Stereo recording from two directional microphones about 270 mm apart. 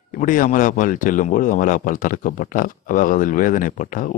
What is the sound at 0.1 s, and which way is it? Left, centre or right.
Speech, left.